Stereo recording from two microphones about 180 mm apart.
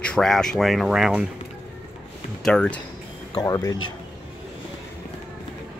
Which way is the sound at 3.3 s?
20° left (ahead or behind).